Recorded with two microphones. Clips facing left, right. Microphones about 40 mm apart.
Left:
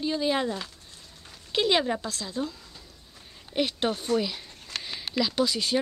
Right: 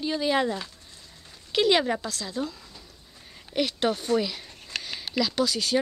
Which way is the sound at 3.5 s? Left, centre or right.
Centre.